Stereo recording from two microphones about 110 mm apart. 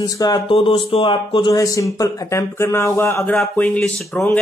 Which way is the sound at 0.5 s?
55° left (ahead or behind).